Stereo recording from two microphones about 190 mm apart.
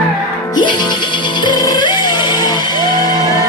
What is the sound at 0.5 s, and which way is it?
Music, 25° left (ahead or behind).